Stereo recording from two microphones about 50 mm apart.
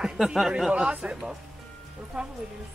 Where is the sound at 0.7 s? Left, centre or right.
Centre.